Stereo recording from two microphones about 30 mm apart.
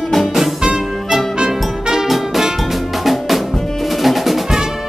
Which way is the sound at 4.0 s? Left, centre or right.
Centre.